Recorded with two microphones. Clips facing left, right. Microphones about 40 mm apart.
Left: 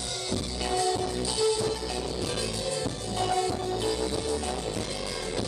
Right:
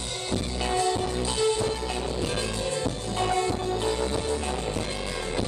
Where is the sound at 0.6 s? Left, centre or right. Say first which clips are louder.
Right 1 dB; right.